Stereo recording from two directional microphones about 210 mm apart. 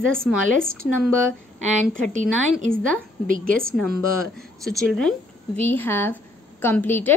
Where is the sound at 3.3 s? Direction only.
45° right (ahead or behind).